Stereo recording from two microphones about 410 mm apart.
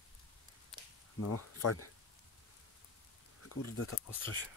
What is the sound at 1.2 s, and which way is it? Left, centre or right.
Speech, left.